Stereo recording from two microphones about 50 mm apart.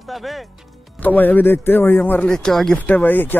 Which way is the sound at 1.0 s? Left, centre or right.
Left.